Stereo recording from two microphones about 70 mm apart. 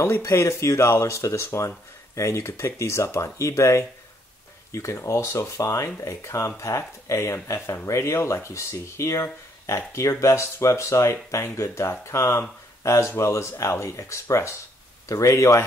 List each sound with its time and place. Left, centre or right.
0.0 s speech: left